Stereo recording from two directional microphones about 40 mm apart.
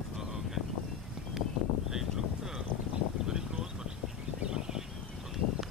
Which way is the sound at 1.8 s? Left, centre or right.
Centre.